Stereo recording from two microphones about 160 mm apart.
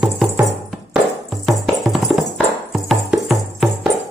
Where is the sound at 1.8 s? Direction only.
Centre (ahead or behind).